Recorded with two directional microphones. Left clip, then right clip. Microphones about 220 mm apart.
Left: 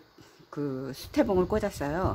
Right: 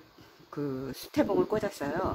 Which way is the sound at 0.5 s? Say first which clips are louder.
Left 1 dB; 25° left (ahead or behind).